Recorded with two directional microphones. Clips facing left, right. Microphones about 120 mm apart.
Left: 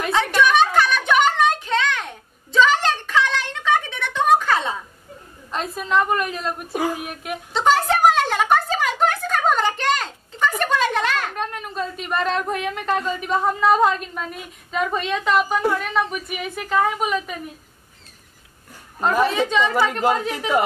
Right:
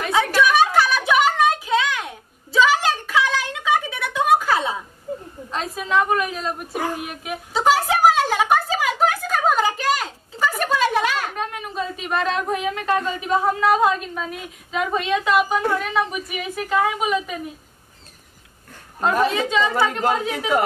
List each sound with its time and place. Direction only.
0.0 s a sound: 5° right (ahead or behind)
15.8 s a woman's voice: 5° right (ahead or behind)
18.9 s a woman's voice: centre (ahead or behind)